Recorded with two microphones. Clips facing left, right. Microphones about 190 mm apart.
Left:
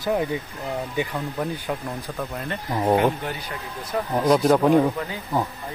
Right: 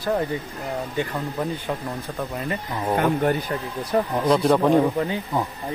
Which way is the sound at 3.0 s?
50° right (ahead or behind).